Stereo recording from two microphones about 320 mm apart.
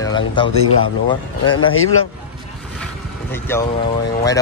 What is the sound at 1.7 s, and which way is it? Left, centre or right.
Speech, left.